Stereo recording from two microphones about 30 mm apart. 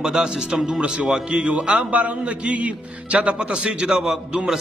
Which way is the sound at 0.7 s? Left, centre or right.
Right.